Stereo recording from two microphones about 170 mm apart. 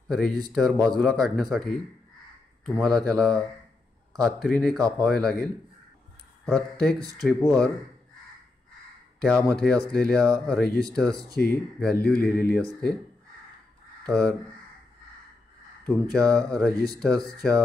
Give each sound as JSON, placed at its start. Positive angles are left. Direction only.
{"t": 0.1, "sound": "speech", "side_deg": 0}
{"t": 9.2, "sound": "speech", "side_deg": 5}
{"t": 11.9, "sound": "speech", "side_deg": 65}
{"t": 14.0, "sound": "speech", "side_deg": 5}
{"t": 15.8, "sound": "speech", "side_deg": 5}